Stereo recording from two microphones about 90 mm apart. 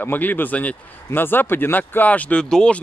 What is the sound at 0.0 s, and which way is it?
Speech, 20° left (ahead or behind).